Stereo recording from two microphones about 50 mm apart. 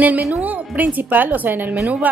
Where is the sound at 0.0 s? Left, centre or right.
Right.